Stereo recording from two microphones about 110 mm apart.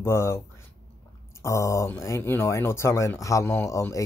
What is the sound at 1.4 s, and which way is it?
Speech, 25° left (ahead or behind).